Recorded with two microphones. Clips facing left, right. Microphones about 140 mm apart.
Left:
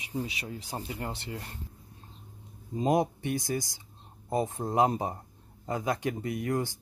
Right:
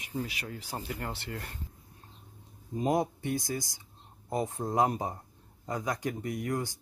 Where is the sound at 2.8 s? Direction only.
20° left (ahead or behind).